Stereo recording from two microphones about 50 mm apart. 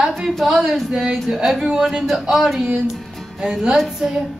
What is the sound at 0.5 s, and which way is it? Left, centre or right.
Speech, centre.